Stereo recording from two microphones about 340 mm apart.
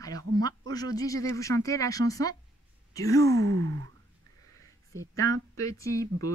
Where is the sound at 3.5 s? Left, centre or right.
Right.